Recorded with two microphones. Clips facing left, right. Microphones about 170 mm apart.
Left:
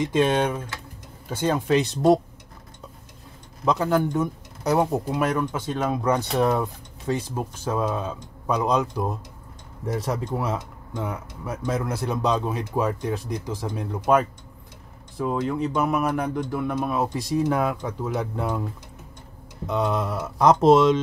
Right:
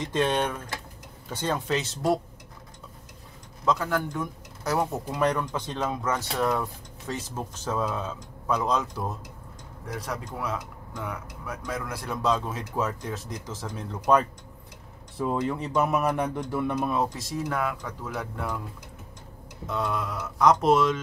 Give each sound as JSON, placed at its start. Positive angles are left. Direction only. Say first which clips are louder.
{"t": 0.0, "sound": "speech", "louder": "left 5 dB", "side_deg": 10}
{"t": 3.6, "sound": "speech", "louder": "left 5 dB", "side_deg": 20}
{"t": 5.2, "sound": "speech", "louder": "left 2 dB", "side_deg": 5}
{"t": 9.9, "sound": "speech", "louder": "left 7 dB", "side_deg": 25}
{"t": 17.1, "sound": "speech", "louder": "left 8 dB", "side_deg": 20}
{"t": 19.6, "sound": "speech", "louder": "left 5 dB", "side_deg": 20}